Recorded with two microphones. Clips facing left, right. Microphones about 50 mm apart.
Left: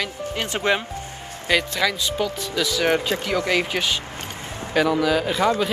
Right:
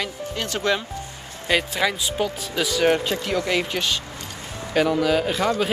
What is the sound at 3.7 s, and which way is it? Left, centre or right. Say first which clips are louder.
Speech: left 1 dB; centre.